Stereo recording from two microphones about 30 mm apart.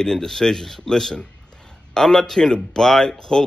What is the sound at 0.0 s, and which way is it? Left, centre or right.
A man's voice, centre.